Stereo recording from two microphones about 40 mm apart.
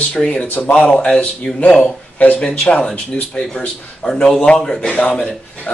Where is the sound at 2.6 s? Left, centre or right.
Left.